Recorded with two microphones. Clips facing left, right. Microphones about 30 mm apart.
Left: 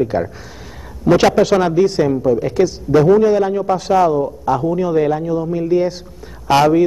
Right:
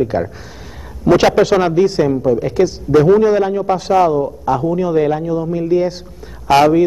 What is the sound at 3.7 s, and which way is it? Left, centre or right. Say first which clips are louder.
Speech: right 1 dB; right.